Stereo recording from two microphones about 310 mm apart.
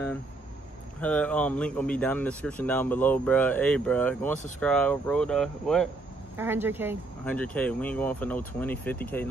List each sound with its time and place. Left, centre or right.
1.0 s speech: centre
7.2 s speech: centre